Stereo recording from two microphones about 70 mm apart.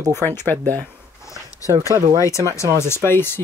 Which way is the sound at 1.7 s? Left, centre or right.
Right.